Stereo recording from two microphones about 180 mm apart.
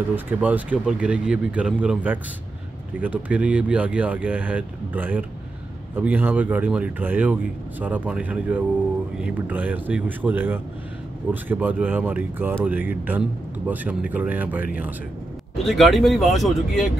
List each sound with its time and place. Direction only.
0.1 s speech: 10° right (ahead or behind)